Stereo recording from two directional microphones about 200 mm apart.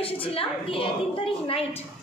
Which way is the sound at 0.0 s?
25° left (ahead or behind).